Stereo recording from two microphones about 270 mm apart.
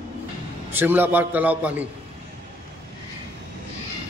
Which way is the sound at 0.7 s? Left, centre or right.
Centre.